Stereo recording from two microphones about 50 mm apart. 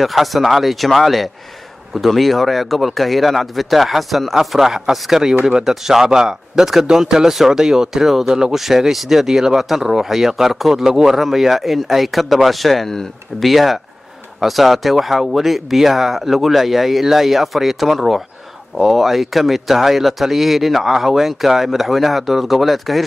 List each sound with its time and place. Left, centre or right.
0.0 s speech: centre